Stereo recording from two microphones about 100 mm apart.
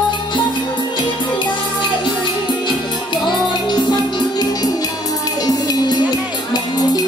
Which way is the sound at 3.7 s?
45° left (ahead or behind).